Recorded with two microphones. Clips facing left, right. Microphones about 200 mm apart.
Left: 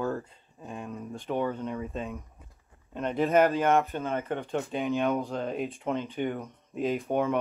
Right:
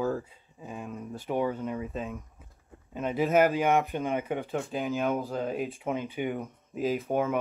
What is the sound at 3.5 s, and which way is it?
Speech, 15° right (ahead or behind).